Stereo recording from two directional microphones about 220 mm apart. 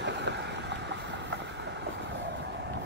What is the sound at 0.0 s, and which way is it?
Vehicle, 50° right (ahead or behind).